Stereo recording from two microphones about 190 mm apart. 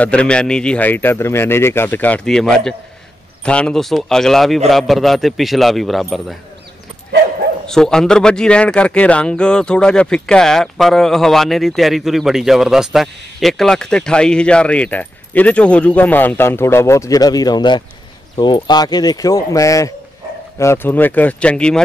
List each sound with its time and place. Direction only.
0.0 s speech: 5° left (ahead or behind)
7.6 s speech: 5° left (ahead or behind)